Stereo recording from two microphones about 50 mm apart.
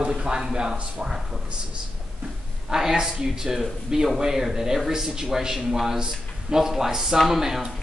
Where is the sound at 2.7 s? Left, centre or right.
Centre.